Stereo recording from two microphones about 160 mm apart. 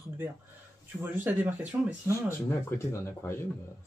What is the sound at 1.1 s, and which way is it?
Speech, 10° right (ahead or behind).